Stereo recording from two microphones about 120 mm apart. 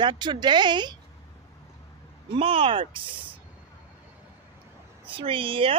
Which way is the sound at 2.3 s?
50° right (ahead or behind).